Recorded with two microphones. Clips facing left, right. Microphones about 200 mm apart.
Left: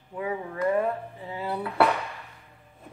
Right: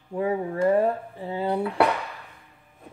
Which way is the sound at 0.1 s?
30° right (ahead or behind).